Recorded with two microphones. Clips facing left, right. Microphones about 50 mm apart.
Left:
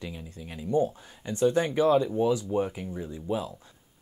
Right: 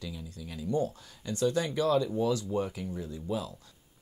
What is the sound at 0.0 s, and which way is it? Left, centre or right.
Speech, left.